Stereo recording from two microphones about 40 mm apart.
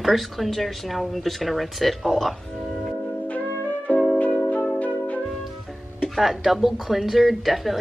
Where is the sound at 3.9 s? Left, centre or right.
Left.